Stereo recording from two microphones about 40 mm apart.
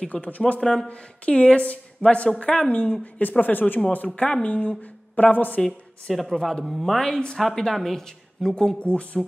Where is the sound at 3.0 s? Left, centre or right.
Left.